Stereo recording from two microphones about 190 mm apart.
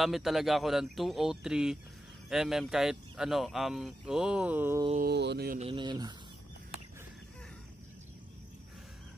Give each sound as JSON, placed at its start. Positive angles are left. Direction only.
{"t": 0.0, "sound": "speech", "side_deg": 0}
{"t": 4.9, "sound": "mantra", "side_deg": -55}
{"t": 5.6, "sound": "speech", "side_deg": -25}